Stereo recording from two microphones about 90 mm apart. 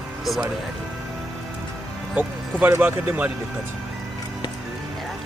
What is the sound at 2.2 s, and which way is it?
Speech, 20° right (ahead or behind).